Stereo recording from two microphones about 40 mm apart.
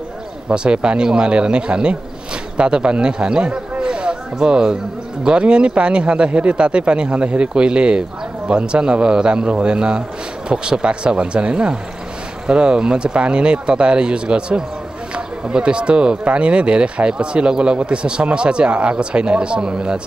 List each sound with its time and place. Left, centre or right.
0.5 s a man's voice: right